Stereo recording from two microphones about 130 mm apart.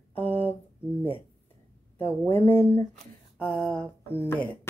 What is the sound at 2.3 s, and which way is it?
Speech, 20° left (ahead or behind).